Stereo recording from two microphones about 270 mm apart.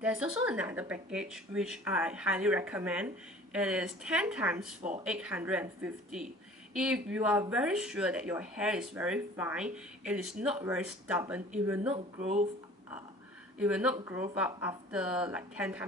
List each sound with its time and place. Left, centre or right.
0.0 s speech: centre
11.9 s speech: right
13.6 s speech: centre